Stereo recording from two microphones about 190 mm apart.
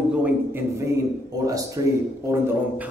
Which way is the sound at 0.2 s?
10° right (ahead or behind).